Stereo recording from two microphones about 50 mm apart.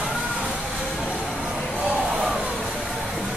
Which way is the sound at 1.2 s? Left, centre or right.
Centre.